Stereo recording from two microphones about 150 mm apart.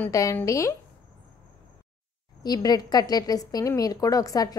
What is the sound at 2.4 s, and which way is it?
A woman's voice, 25° left (ahead or behind).